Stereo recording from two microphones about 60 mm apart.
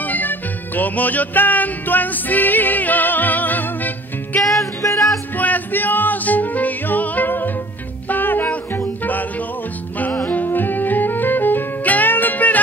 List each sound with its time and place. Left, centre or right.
0.0 s music: left
4.4 s music: centre
5.4 s music: left